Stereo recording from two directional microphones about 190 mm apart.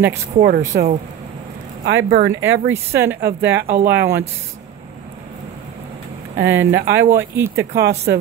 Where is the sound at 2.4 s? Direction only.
85° right.